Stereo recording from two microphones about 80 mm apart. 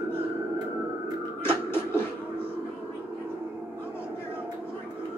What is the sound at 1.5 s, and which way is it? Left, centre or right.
Music, left.